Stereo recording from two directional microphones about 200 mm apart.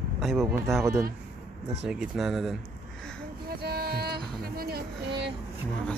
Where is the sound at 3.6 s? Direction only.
50° right (ahead or behind).